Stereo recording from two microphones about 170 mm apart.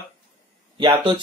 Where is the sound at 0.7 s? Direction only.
25° right (ahead or behind).